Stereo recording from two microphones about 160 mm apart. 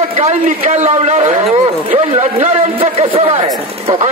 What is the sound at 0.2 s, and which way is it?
Speech, 50° right (ahead or behind).